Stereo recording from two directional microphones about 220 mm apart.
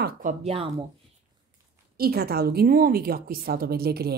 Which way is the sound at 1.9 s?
45° right (ahead or behind).